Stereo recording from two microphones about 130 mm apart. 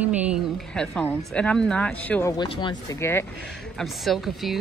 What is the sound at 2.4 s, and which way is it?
Speech, 35° left (ahead or behind).